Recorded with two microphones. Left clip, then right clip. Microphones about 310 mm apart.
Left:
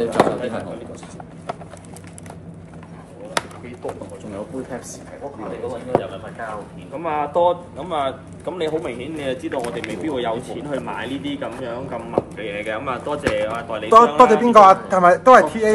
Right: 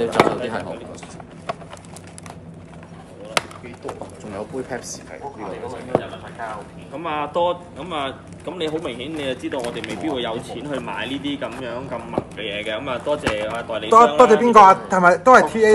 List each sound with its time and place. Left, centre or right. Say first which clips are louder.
0.0 s speech: even; centre
5.7 s a man's voice: left 2 dB; centre
14.2 s a man's voice: even; right